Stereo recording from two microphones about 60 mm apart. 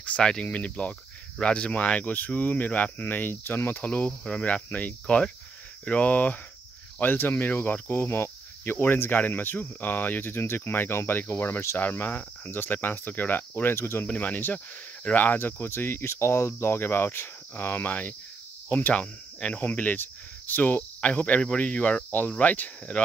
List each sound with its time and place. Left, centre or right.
0.2 s speech: centre; by 3.8 s left
3.8 s speech: left
7.0 s speech: left
13.7 s speech: left
14.0 s speech: left